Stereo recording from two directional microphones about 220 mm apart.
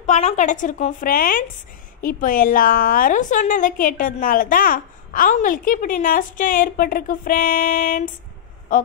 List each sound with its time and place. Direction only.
0.0 s a woman's voice: 30° left (ahead or behind)